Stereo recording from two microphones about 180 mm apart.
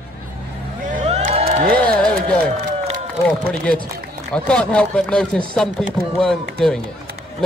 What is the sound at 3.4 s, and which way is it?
A man's voice, 5° left (ahead or behind).